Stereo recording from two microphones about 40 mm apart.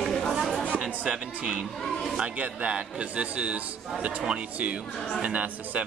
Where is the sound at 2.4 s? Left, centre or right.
Right.